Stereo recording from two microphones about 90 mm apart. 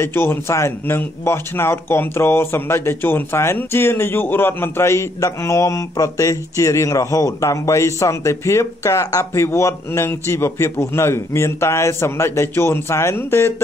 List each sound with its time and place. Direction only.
0.0 s a man's voice: 25° left (ahead or behind)